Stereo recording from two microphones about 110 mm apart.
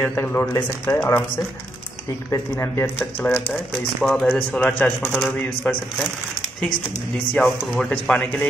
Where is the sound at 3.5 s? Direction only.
5° left (ahead or behind).